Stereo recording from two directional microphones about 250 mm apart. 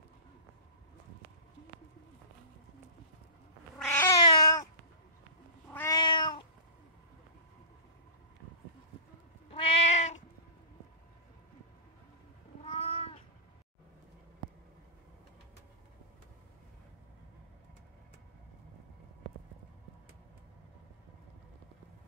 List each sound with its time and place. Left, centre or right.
3.8 s cat: centre
5.7 s cat: centre
9.5 s cat: left
12.6 s cat: left